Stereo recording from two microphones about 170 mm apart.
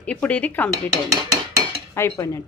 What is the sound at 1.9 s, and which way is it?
Speech, 20° left (ahead or behind).